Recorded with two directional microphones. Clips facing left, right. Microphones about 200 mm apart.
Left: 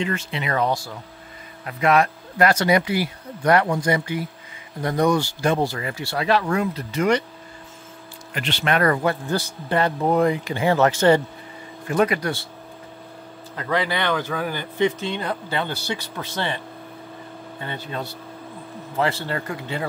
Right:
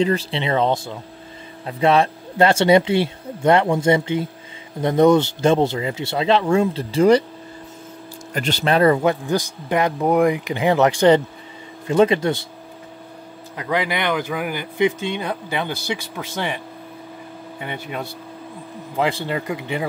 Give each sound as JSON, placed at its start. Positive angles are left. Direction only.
{"t": 0.0, "sound": "speech", "side_deg": -35}
{"t": 8.3, "sound": "speech", "side_deg": -40}
{"t": 8.9, "sound": "speech", "side_deg": -20}
{"t": 13.6, "sound": "speech", "side_deg": -15}